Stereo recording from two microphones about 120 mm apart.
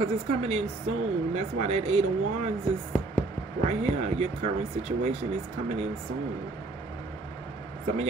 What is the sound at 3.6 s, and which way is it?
A woman's voice, 70° right (ahead or behind).